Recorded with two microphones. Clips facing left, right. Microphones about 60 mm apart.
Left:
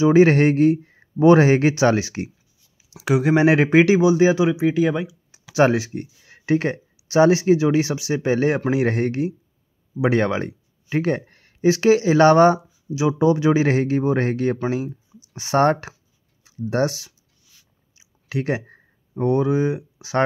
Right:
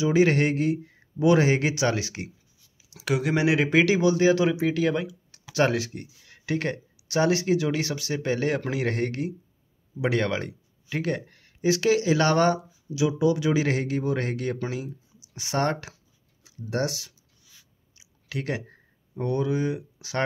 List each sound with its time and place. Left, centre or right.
0.0 s speech: left; by 4.9 s centre
4.9 s speech: centre
5.5 s speech: left
17.9 s a sound: left